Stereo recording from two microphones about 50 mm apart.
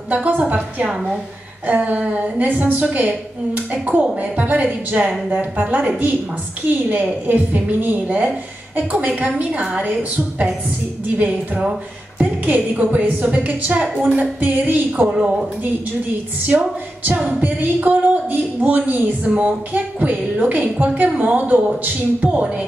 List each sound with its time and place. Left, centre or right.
0.1 s speech: right
6.9 s speech: right
12.2 s speech: right
15.0 s a woman's voice: centre
16.4 s speech: right